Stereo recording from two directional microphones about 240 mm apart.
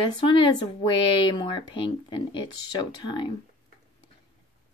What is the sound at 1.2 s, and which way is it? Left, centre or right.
Speech, centre.